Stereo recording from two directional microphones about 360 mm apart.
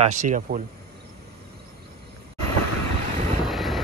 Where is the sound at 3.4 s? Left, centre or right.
Centre.